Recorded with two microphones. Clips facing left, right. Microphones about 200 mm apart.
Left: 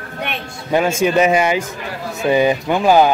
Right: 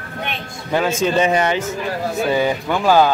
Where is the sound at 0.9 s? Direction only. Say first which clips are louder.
Left 2 dB; 10° left (ahead or behind).